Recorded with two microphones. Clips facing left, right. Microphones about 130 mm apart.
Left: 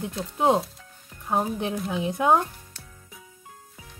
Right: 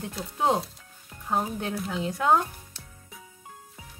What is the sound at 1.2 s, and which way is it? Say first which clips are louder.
Speech: left 3 dB; 10° left (ahead or behind).